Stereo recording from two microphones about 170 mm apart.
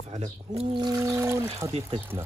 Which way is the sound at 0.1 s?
40° right (ahead or behind).